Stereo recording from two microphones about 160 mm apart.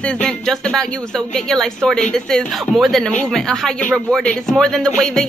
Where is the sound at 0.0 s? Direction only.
5° left (ahead or behind).